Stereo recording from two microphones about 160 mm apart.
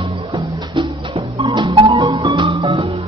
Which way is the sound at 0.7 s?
30° right (ahead or behind).